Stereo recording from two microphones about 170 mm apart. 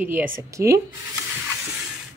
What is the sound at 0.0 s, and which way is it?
Speech, 15° right (ahead or behind).